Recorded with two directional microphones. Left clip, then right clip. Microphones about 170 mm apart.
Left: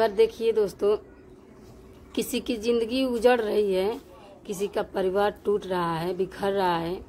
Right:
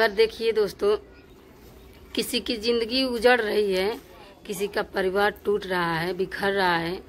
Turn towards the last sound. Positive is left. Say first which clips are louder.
# right 2 dB
turn(degrees=5)  # may be behind; listen again after turning